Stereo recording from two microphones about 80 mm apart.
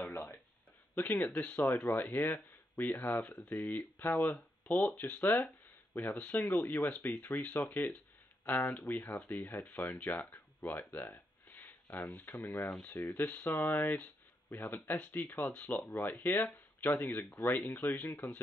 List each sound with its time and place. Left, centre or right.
0.9 s speech: left
10.3 s a sound: centre
12.0 s speech: centre
12.4 s speech: left